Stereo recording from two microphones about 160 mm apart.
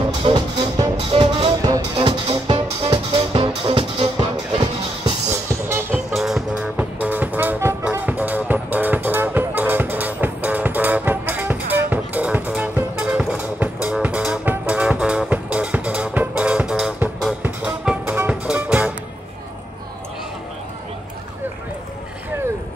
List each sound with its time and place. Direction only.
0.2 s music: 35° right (ahead or behind)
1.6 s music: 25° right (ahead or behind)
2.2 s music: 35° right (ahead or behind)
5.5 s music: 15° right (ahead or behind)
6.1 s music: centre (ahead or behind)